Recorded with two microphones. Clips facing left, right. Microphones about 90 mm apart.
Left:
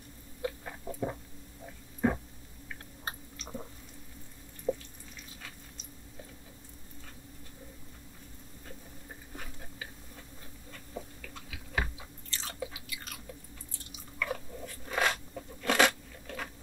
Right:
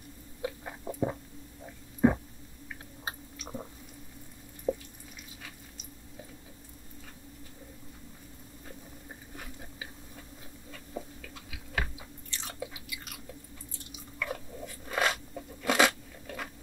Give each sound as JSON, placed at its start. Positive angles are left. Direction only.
{"t": 0.4, "sound": "biting", "side_deg": -15}
{"t": 2.0, "sound": "a sound", "side_deg": -15}
{"t": 3.1, "sound": "chewing", "side_deg": -10}
{"t": 4.7, "sound": "drip", "side_deg": -5}
{"t": 10.9, "sound": "chewing", "side_deg": -10}
{"t": 11.5, "sound": "chewing", "side_deg": 0}
{"t": 14.2, "sound": "crunch", "side_deg": -5}